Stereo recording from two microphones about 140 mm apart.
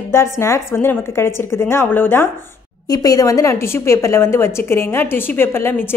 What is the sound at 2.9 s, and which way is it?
A woman's voice, 25° left (ahead or behind).